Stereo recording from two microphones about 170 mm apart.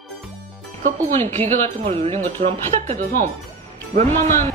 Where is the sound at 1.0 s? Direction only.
45° right (ahead or behind).